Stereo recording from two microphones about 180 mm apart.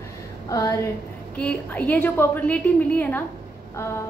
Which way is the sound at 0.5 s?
20° left (ahead or behind).